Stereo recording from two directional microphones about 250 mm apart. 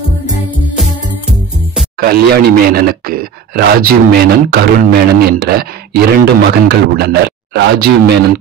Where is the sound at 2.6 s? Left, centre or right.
Right.